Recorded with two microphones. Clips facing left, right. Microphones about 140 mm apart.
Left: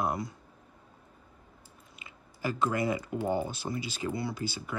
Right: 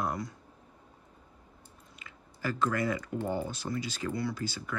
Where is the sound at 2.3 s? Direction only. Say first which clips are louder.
Left 1 dB; 15° left (ahead or behind).